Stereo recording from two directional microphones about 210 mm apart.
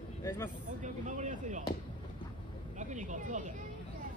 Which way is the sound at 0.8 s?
35° right (ahead or behind).